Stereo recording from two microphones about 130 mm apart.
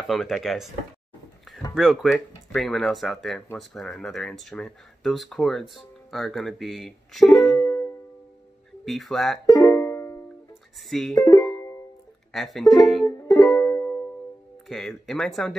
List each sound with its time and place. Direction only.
0.0 s speech: centre (ahead or behind)
1.8 s speech: 5° right (ahead or behind)
7.5 s music: 20° left (ahead or behind)
8.8 s speech: centre (ahead or behind)
9.5 s music: 25° left (ahead or behind)
10.9 s speech: centre (ahead or behind)
11.1 s music: 25° left (ahead or behind)
12.3 s speech: centre (ahead or behind)
13.3 s music: 25° left (ahead or behind)
14.7 s speech: 5° left (ahead or behind)